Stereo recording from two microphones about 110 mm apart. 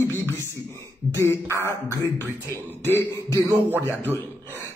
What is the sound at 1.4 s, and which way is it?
Speech, 25° right (ahead or behind).